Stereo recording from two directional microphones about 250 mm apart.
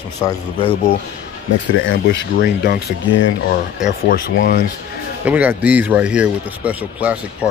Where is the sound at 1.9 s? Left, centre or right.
Left.